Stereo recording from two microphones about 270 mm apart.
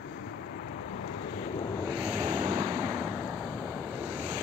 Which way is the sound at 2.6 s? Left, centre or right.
Centre.